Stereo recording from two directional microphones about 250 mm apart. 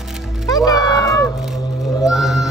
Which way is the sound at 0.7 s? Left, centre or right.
Centre.